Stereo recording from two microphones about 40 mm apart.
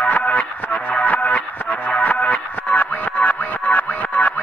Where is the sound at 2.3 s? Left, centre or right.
Left.